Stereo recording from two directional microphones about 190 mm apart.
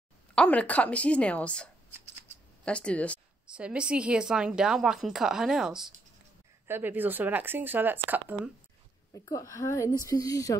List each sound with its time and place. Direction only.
0.3 s a woman's voice: 5° left (ahead or behind)
3.5 s a woman's voice: 5° right (ahead or behind)
9.1 s a woman's voice: 15° left (ahead or behind)